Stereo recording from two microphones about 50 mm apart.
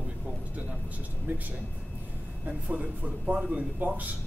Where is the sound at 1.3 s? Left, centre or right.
Right.